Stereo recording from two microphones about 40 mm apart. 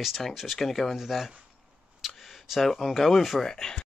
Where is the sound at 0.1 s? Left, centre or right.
Centre.